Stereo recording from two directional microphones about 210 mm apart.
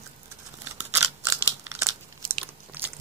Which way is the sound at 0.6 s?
10° right (ahead or behind).